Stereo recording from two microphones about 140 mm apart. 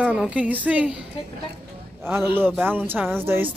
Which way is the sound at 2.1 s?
15° right (ahead or behind).